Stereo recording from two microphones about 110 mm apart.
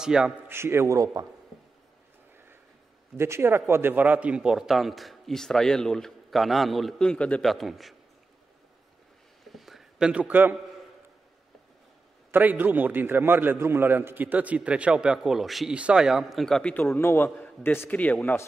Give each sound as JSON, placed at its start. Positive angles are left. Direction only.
{"t": 0.0, "sound": "a man's voice", "side_deg": -5}
{"t": 0.5, "sound": "a man's voice", "side_deg": -20}
{"t": 3.2, "sound": "a man's voice", "side_deg": -25}
{"t": 7.4, "sound": "a man's voice", "side_deg": 0}
{"t": 9.4, "sound": "a sound", "side_deg": 0}
{"t": 12.3, "sound": "a man's voice", "side_deg": -15}
{"t": 16.7, "sound": "a man's voice", "side_deg": 20}